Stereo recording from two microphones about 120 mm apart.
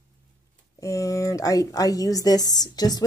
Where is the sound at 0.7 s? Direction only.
25° left (ahead or behind).